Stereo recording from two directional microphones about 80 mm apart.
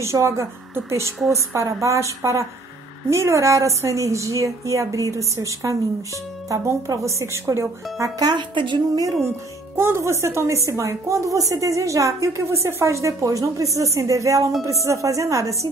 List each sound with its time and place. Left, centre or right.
0.0 s a woman's voice: right
8.2 s speech: right
9.8 s a woman's voice: right